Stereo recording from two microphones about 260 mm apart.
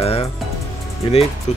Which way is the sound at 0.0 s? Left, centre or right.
Left.